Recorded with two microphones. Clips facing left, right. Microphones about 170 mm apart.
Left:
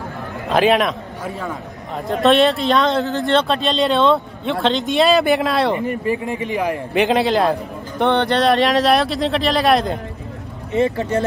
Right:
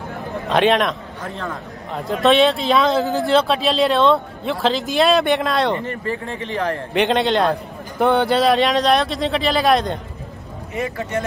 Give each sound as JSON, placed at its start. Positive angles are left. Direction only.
{"t": 0.5, "sound": "a man's voice", "side_deg": 0}
{"t": 10.7, "sound": "speech", "side_deg": 30}